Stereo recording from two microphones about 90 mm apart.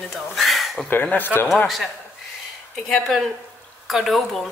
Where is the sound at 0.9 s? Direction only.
20° left (ahead or behind).